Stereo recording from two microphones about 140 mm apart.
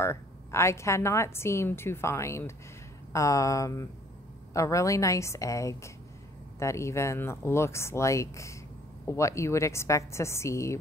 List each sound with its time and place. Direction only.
0.0 s a woman's voice: 20° left (ahead or behind)